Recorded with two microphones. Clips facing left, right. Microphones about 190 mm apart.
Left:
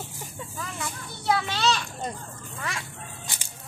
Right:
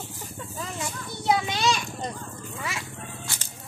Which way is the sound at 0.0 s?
10° left (ahead or behind).